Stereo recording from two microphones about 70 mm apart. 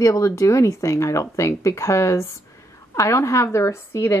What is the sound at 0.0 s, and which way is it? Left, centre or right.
A woman's voice, left.